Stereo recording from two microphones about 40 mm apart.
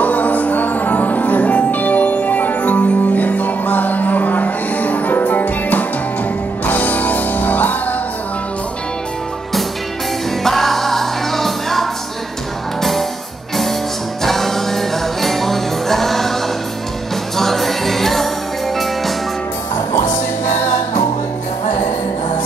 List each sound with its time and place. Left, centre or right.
0.0 s music: left
10.4 s music: centre
14.2 s music: centre
17.4 s music: centre